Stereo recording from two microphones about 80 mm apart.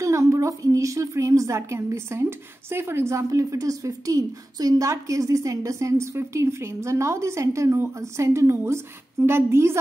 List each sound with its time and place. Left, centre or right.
0.0 s a woman's voice: right